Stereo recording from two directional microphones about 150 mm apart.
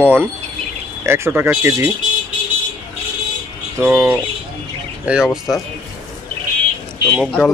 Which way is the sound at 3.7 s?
15° right (ahead or behind).